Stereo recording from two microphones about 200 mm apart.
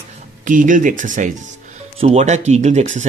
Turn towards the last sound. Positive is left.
turn(degrees=-35)  # may be behind; listen again after turning